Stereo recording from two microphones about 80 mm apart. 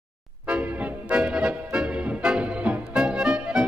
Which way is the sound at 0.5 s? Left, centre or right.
Centre.